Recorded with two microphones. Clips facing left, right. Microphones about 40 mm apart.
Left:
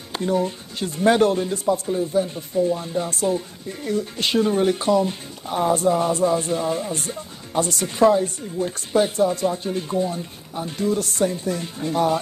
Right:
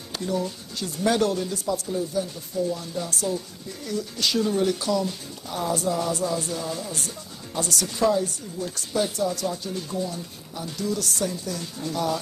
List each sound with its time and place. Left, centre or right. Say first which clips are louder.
0.1 s speech: left 6 dB; left